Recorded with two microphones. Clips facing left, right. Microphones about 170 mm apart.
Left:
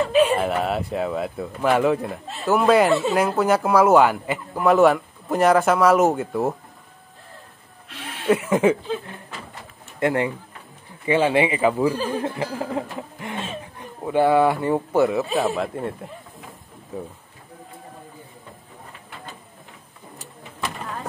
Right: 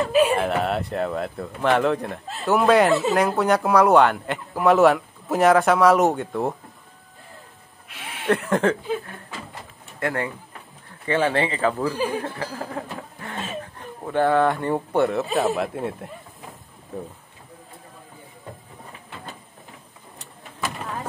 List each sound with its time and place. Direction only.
0.1 s a sound: 5° right (ahead or behind)
0.4 s speech: centre (ahead or behind)
8.3 s speech: 5° left (ahead or behind)
9.9 s speech: 20° left (ahead or behind)
11.1 s a sound: 10° left (ahead or behind)
14.0 s speech: 10° left (ahead or behind)